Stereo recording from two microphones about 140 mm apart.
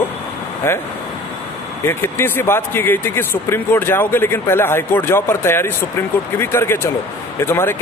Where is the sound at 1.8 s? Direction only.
15° left (ahead or behind).